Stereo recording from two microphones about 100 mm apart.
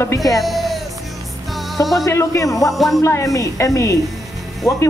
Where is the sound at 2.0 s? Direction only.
30° left (ahead or behind).